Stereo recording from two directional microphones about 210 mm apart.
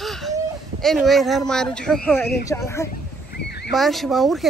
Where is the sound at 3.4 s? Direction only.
50° left (ahead or behind).